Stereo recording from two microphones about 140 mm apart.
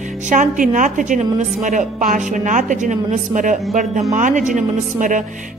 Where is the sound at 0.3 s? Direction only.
65° right (ahead or behind).